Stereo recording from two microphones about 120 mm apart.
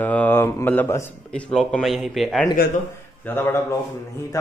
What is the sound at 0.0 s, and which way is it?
Speech, 15° left (ahead or behind).